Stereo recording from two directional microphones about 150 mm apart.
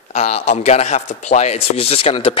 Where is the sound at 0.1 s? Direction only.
45° left (ahead or behind).